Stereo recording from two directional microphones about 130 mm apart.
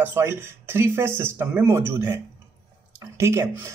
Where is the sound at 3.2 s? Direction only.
20° right (ahead or behind).